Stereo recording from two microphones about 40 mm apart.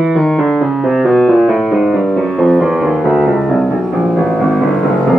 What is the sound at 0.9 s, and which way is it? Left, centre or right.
Music, centre.